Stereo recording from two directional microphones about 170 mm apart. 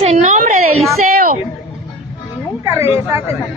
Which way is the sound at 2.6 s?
15° right (ahead or behind).